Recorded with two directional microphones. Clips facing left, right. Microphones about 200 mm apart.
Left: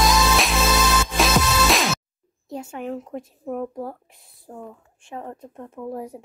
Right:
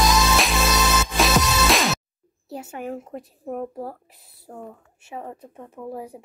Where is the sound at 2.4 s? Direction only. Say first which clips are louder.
Left 1 dB; 5° right (ahead or behind).